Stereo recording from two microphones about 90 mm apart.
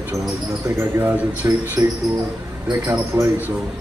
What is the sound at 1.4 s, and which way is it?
Speech, 35° right (ahead or behind).